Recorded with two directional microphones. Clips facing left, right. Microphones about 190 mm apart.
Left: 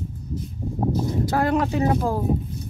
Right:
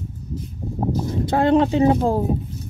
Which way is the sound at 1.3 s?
25° right (ahead or behind).